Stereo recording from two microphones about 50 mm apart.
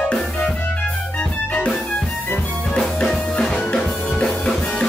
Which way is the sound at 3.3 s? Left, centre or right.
Centre.